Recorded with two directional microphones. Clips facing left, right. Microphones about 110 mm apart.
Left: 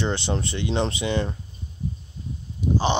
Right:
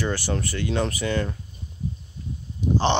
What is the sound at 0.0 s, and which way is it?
Speech, 20° left (ahead or behind).